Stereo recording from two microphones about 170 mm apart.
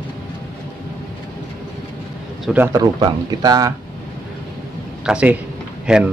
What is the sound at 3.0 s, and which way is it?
Speech, 20° right (ahead or behind).